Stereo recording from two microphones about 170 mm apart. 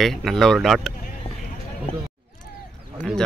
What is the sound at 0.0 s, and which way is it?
Speech, centre (ahead or behind).